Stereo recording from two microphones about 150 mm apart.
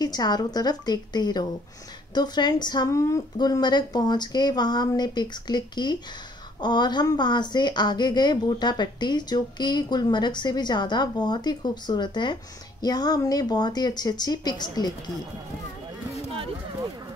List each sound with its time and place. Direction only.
0.0 s a woman's voice: 25° left (ahead or behind)